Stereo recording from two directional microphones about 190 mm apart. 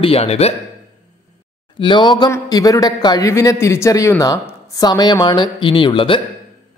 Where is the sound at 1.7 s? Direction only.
25° left (ahead or behind).